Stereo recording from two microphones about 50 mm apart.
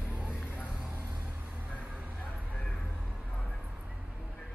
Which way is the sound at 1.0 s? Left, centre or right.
Right.